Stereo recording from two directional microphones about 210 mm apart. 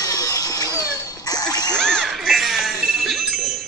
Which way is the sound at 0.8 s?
15° left (ahead or behind).